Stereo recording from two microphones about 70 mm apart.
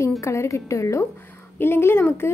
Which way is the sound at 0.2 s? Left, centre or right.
Left.